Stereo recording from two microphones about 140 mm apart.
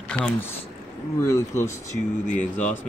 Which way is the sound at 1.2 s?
20° left (ahead or behind).